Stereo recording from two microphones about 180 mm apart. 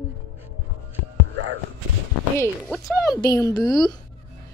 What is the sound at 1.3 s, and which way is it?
Music, 80° right.